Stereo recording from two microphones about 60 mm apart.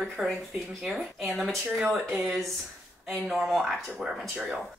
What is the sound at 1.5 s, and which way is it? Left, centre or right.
Speech, centre.